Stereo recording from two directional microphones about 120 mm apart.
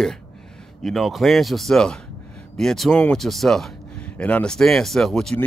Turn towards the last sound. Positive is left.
turn(degrees=5)  # may be behind; listen again after turning